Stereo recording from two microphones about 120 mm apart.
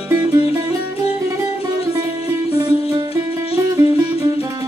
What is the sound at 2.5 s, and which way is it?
Music, 35° right (ahead or behind).